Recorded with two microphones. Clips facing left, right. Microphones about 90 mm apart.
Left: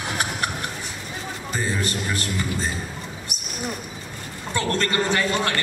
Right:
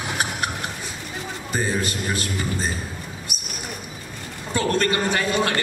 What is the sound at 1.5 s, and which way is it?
A woman's voice, 20° right (ahead or behind).